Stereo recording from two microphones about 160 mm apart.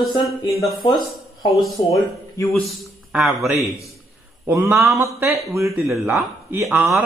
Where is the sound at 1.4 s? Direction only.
20° left (ahead or behind).